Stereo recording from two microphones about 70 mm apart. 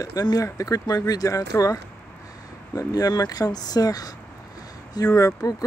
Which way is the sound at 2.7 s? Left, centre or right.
Left.